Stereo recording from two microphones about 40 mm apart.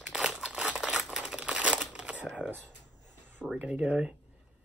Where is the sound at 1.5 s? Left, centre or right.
Right.